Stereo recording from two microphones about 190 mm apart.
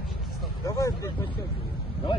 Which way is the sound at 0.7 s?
15° left (ahead or behind).